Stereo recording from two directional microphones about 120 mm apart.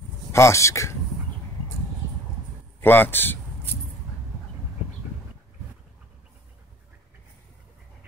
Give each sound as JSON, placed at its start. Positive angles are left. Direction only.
{"t": 0.3, "sound": "speech", "side_deg": 25}
{"t": 2.8, "sound": "speech", "side_deg": 15}